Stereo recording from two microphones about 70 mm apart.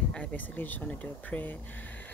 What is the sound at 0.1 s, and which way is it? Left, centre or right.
Speech, left.